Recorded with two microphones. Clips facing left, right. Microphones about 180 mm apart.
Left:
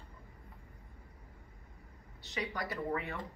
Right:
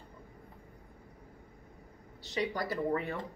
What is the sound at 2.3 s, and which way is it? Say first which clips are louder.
Speech: right 5 dB; 35° right (ahead or behind).